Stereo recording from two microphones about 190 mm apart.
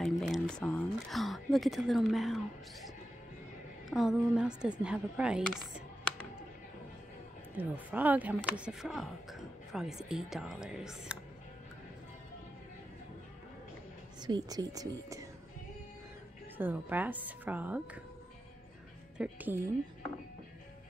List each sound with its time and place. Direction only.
0.0 s a sound: centre (ahead or behind)
3.9 s speech: centre (ahead or behind)
7.5 s speech: 10° right (ahead or behind)
14.2 s speech: 20° right (ahead or behind)
16.5 s a woman's voice: 10° right (ahead or behind)
19.1 s speech: 5° right (ahead or behind)